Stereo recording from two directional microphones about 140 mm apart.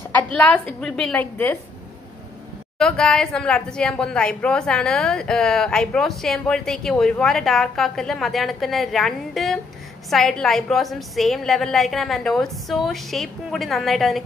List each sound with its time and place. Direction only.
0.1 s a sound: 10° left (ahead or behind)
0.7 s a woman's voice: 5° left (ahead or behind)
2.8 s a woman's voice: 5° left (ahead or behind)